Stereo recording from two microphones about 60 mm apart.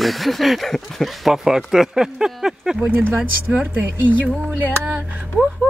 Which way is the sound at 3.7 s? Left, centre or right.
Right.